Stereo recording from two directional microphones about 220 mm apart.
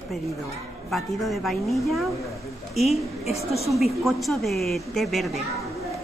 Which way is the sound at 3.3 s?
30° left (ahead or behind).